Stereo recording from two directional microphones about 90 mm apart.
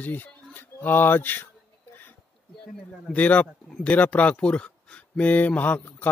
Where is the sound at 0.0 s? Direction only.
20° left (ahead or behind).